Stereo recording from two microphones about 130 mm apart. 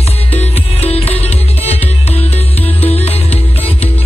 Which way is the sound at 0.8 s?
50° left (ahead or behind).